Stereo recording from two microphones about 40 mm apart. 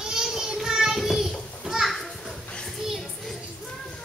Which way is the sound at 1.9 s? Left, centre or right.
Centre.